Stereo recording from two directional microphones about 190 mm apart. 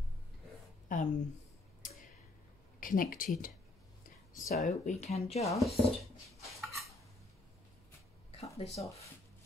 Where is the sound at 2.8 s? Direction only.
45° left (ahead or behind).